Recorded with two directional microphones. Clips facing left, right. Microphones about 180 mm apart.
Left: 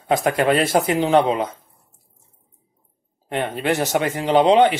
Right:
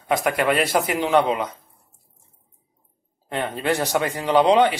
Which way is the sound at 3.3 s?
20° left (ahead or behind).